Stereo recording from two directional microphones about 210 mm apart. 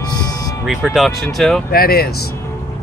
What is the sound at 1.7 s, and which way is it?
Speech, 45° left (ahead or behind).